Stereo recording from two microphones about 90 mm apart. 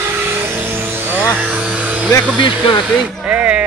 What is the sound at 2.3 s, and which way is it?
Hair dryer, 60° left (ahead or behind).